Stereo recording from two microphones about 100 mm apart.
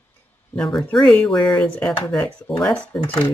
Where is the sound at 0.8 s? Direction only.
5° left (ahead or behind).